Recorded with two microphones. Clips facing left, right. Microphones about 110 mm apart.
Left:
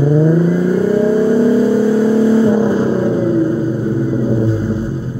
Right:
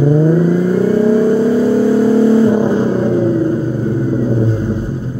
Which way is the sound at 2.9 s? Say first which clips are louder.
Right 1 dB; 10° left (ahead or behind).